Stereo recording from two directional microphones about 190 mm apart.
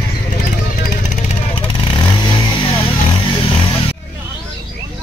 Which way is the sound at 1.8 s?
25° left (ahead or behind).